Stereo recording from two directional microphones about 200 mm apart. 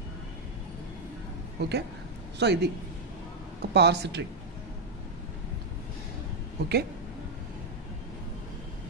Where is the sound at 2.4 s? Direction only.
60° right (ahead or behind).